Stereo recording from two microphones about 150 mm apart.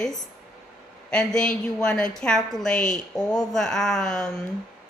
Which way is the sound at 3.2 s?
25° left (ahead or behind).